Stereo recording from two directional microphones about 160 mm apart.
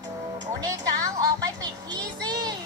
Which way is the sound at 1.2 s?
25° right (ahead or behind).